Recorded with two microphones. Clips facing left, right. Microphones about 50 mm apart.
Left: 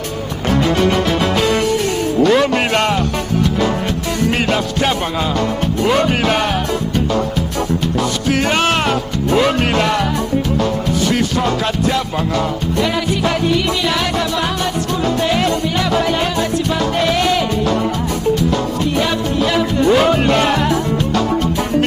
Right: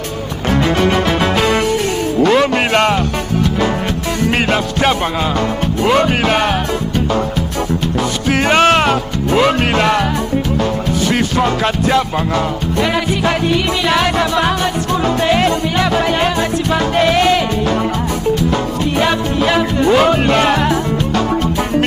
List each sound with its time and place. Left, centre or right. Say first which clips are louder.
0.5 s music: right 1 dB; right
4.3 s music: right 3 dB; right
8.3 s music: right 5 dB; right